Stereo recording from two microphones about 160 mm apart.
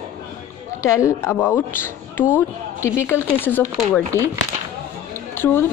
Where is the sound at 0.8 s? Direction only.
20° left (ahead or behind).